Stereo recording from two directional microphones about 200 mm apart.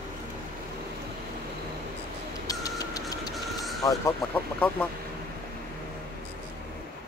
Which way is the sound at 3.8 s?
15° left (ahead or behind).